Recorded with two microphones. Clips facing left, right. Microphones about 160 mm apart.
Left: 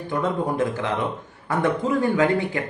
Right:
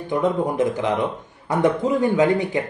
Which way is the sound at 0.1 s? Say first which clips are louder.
Right 3 dB; 20° right (ahead or behind).